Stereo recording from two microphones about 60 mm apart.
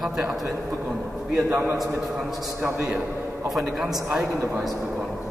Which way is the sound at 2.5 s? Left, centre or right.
Right.